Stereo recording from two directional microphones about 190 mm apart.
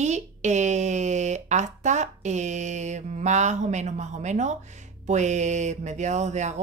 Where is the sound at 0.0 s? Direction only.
35° right (ahead or behind).